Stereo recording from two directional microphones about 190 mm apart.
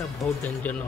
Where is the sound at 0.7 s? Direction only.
10° left (ahead or behind).